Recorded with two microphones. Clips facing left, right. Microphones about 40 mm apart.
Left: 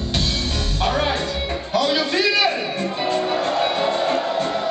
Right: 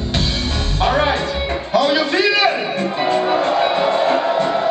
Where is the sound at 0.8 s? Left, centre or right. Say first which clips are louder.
Right 5 dB; centre.